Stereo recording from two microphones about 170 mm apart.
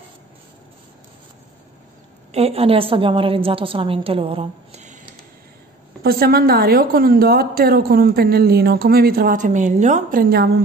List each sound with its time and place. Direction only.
2.3 s a woman's voice: 35° right (ahead or behind)
6.0 s a woman's voice: 65° right (ahead or behind); by 10.2 s 45° right (ahead or behind)
10.3 s a woman's voice: 70° right (ahead or behind)